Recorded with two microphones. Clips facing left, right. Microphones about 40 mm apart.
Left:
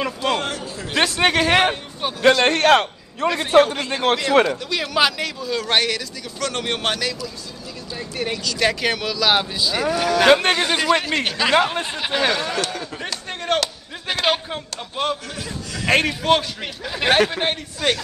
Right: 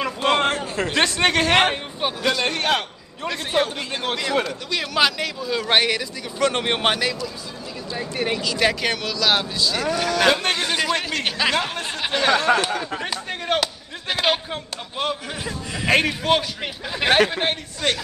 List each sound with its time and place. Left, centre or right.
0.2 s a sound: right
0.8 s a man's voice: centre
1.6 s speech: centre
2.2 s a man's voice: left
4.1 s a man's voice: left
4.6 s a man's voice: centre
5.4 s a man's voice: centre
8.5 s a man's voice: centre
10.8 s a sound: centre
11.2 s a man's voice: centre
12.4 s speech: centre
13.0 s a sound: centre
15.4 s a man's voice: centre
15.9 s a man's voice: centre